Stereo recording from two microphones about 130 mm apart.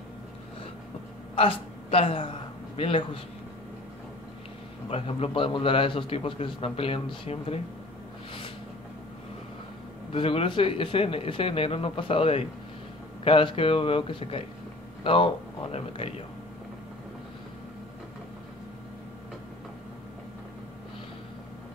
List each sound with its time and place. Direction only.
1.3 s a man's voice: 45° left (ahead or behind)
4.8 s a man's voice: 50° left (ahead or behind)
10.1 s a man's voice: 45° left (ahead or behind)